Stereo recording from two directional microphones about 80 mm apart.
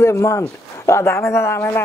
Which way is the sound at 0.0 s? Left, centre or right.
Left.